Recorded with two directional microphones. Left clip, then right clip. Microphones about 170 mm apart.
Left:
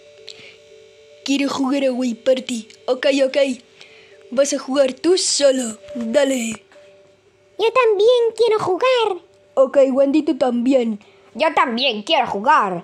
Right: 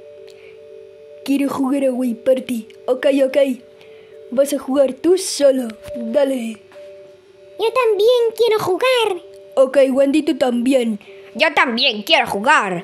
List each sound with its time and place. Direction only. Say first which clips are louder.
1.2 s speech: right 1 dB; 5° right (ahead or behind)
6.1 s speech: even; 15° left (ahead or behind)
7.5 s a child's voice: left 1 dB; 20° left (ahead or behind)
7.9 s speech: even; 10° left (ahead or behind); by 12.8 s 5° right (ahead or behind)